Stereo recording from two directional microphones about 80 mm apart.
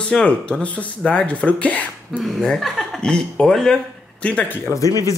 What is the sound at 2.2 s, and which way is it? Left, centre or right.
A man's voice, centre.